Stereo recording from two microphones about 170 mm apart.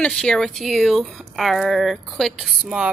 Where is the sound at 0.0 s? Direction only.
5° left (ahead or behind).